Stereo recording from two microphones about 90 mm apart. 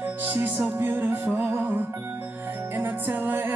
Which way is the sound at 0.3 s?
20° right (ahead or behind).